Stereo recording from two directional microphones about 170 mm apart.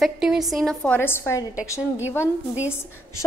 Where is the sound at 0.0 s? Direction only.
Centre (ahead or behind); by 1.4 s 15° left (ahead or behind).